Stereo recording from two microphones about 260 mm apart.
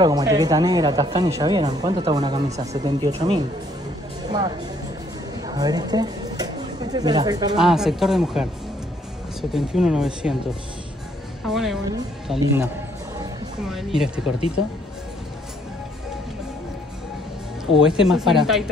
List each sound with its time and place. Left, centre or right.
0.0 s a woman's voice: centre
7.5 s a woman's voice: centre
11.4 s a woman's voice: centre
13.7 s a woman's voice: centre
17.8 s a woman's voice: centre